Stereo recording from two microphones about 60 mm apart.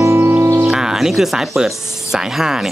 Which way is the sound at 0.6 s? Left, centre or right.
Centre.